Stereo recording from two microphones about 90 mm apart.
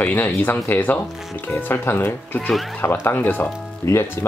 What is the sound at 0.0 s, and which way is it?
Speech, 20° left (ahead or behind).